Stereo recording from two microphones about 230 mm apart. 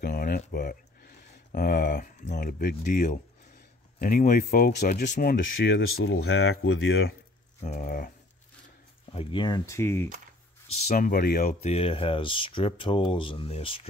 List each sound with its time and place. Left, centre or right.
0.0 s speech: left
5.4 s speech: left
7.6 s speech: left
9.1 s speech: left
10.9 s speech: left